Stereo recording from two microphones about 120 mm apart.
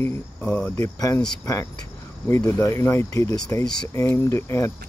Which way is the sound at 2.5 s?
25° left (ahead or behind).